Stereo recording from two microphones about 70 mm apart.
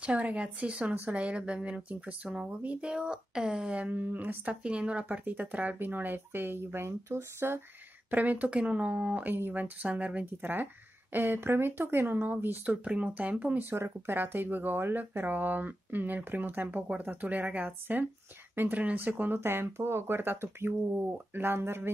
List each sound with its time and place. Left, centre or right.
0.0 s speech: centre
3.8 s speech: right
4.5 s speech: centre; by 7.6 s right
8.1 s speech: right
13.6 s speech: right